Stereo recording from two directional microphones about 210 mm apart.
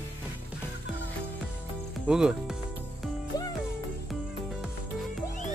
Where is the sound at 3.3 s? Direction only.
15° left (ahead or behind).